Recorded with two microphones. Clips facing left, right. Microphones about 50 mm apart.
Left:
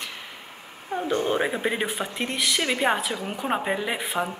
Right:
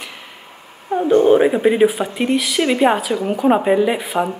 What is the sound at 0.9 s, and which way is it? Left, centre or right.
Speech, centre.